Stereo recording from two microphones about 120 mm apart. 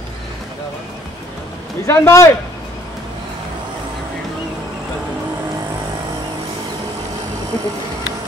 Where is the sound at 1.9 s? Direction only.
25° left (ahead or behind).